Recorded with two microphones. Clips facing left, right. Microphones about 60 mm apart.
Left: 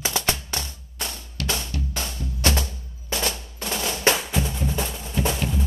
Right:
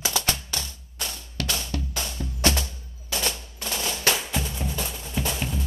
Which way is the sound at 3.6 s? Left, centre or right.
Centre.